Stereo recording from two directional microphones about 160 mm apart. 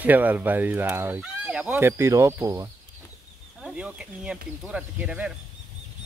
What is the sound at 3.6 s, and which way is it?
Speech, 5° right (ahead or behind).